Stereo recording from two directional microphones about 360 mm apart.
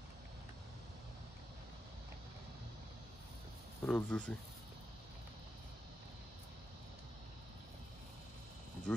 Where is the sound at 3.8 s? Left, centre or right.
Centre.